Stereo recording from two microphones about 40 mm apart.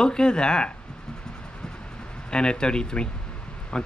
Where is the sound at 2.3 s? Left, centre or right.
Left.